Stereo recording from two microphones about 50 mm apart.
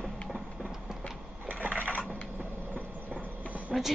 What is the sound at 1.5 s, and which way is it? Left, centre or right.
Sewing machine, right.